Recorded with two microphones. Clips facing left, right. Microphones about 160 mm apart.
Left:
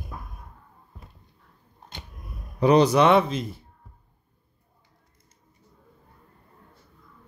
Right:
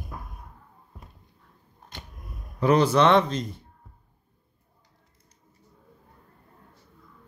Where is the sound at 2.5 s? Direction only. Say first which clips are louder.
Left 2 dB; 15° left (ahead or behind).